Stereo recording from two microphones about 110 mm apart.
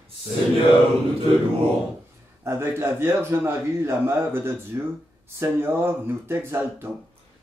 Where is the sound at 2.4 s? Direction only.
25° right (ahead or behind).